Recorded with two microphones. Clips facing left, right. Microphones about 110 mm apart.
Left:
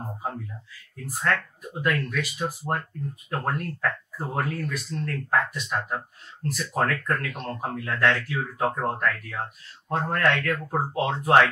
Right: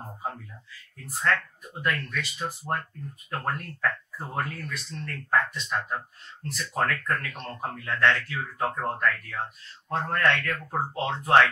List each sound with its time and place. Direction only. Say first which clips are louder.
1.0 s speech: left 1 dB; 5° left (ahead or behind)